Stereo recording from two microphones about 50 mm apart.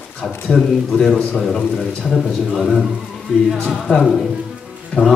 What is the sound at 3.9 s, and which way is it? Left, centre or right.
Speech, centre.